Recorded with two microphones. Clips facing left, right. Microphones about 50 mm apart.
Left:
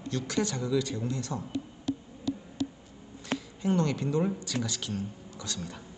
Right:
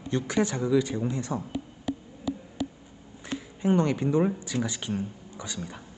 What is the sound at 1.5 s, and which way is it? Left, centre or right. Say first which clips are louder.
Insect: even; centre.